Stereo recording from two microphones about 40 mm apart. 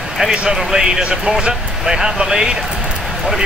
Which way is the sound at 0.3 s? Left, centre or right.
Centre.